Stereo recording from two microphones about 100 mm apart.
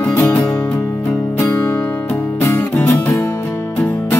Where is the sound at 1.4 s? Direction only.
25° left (ahead or behind).